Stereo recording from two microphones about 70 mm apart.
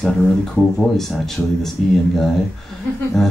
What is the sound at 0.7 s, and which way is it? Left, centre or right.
Speech, centre.